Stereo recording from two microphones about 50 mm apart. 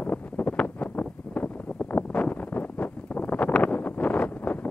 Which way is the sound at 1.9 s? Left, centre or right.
Left.